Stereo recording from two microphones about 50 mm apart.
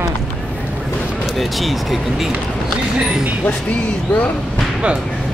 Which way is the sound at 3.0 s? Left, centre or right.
Centre.